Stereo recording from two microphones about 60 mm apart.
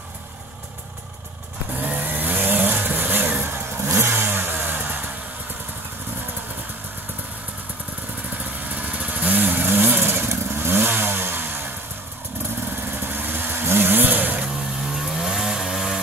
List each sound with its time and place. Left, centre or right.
1.8 s vehicle: right
8.7 s vehicle: right
12.9 s vehicle: right
15.0 s chainsaw: centre